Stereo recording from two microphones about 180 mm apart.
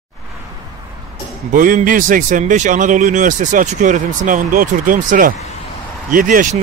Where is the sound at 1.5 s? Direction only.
50° right (ahead or behind).